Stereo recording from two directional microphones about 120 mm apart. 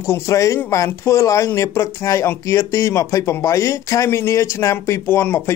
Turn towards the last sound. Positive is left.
turn(degrees=20)  # may be behind; listen again after turning